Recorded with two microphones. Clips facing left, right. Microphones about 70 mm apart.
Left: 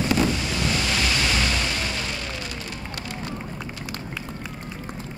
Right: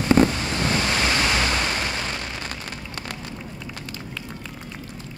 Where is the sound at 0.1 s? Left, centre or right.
Right.